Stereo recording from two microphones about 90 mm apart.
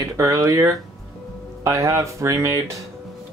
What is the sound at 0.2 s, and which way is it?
Speech, 35° right (ahead or behind).